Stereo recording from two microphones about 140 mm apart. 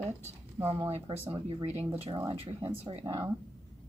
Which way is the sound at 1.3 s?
40° right (ahead or behind).